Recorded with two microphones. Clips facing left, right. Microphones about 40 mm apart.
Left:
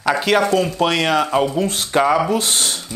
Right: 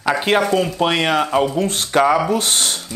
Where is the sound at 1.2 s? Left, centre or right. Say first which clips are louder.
Even; centre.